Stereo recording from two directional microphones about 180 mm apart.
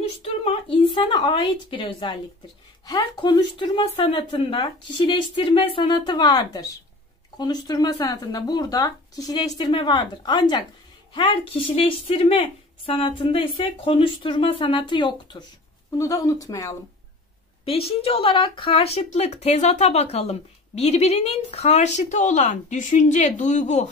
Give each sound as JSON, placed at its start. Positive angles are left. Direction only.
{"t": 0.2, "sound": "speech", "side_deg": 30}
{"t": 17.6, "sound": "speech", "side_deg": 30}